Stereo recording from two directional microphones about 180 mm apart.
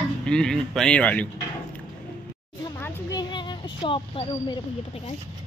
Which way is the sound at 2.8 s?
20° left (ahead or behind).